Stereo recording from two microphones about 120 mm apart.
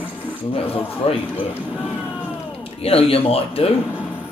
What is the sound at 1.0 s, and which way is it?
Speech, 55° left (ahead or behind).